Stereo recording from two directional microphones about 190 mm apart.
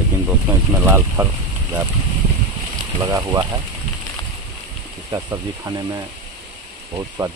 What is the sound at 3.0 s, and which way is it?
Speech, 20° right (ahead or behind).